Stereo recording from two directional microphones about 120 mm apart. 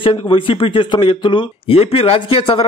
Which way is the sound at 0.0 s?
45° left (ahead or behind).